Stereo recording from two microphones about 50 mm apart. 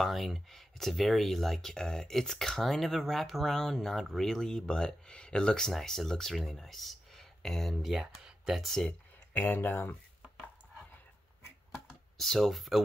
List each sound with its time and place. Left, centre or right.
0.0 s speech: centre
5.7 s speech: centre
7.9 s speech: centre
9.3 s speech: left
11.7 s computer keyboard: centre